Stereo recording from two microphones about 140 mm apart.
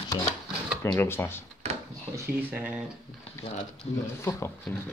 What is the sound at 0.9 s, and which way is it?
Speech, 15° left (ahead or behind).